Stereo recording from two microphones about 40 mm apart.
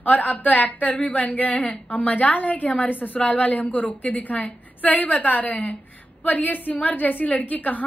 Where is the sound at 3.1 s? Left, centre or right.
Left.